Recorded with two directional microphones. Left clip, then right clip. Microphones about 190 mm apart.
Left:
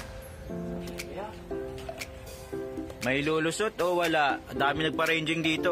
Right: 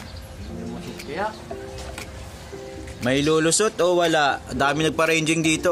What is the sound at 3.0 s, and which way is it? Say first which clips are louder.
Speech: right 8 dB; centre (ahead or behind).